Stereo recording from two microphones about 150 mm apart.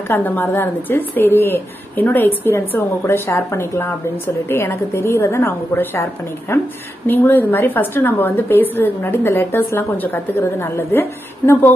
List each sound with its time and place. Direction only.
0.1 s a woman's voice: 15° left (ahead or behind)